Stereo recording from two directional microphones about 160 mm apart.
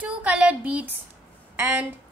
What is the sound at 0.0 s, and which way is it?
A woman's voice, 10° right (ahead or behind).